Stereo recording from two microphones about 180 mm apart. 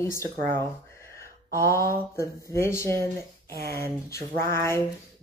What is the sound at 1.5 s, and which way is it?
Speech, 15° left (ahead or behind).